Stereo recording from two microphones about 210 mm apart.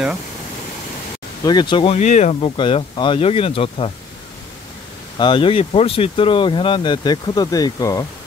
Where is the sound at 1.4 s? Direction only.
20° left (ahead or behind).